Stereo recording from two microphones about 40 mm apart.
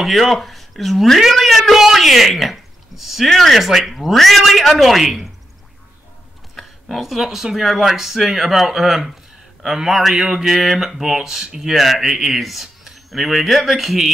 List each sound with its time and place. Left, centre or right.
0.0 s speech: centre
1.6 s a sound: centre
3.3 s mantra: centre
6.5 s speech: centre
9.8 s mantra: centre
11.1 s speech: centre
11.6 s speech: centre